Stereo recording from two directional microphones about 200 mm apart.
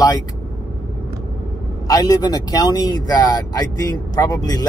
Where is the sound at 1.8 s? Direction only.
20° left (ahead or behind).